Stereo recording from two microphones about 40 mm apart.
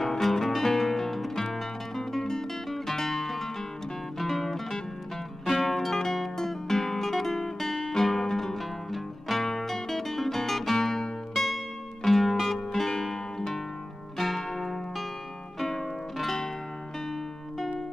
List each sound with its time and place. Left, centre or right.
0.0 s music: centre
14.1 s zither: centre
15.6 s music: centre